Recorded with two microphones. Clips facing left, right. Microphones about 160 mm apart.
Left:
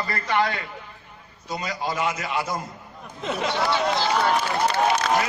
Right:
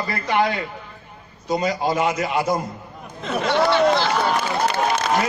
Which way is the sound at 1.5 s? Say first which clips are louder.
Right 8 dB; 35° right (ahead or behind).